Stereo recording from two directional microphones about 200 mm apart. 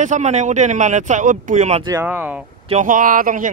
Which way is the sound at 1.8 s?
15° right (ahead or behind).